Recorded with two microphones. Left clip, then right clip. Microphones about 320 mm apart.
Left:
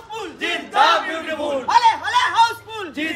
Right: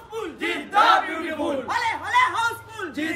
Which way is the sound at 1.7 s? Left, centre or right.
Centre.